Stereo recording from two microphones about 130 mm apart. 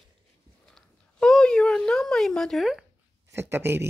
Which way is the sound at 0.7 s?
5° left (ahead or behind).